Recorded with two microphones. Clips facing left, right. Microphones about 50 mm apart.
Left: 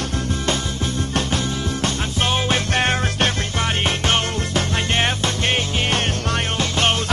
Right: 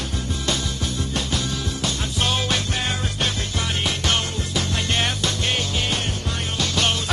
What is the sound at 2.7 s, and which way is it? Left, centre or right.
Music, left.